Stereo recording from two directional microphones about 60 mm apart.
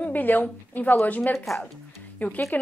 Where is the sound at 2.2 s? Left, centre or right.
Left.